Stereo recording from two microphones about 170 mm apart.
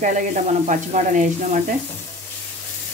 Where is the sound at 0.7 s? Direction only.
45° right (ahead or behind).